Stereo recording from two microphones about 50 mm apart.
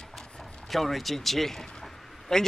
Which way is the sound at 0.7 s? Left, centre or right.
Centre.